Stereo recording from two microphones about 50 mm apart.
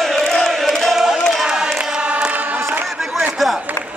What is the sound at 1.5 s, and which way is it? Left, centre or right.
Choir, centre.